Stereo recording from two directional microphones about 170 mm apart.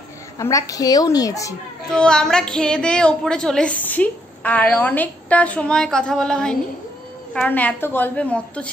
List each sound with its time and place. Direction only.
0.4 s a woman's voice: 20° left (ahead or behind)
1.9 s a woman's voice: 5° left (ahead or behind)